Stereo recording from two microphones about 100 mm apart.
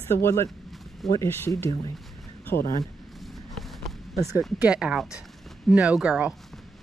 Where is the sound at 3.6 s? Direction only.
Centre (ahead or behind).